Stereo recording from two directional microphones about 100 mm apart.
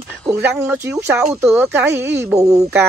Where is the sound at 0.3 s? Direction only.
25° right (ahead or behind).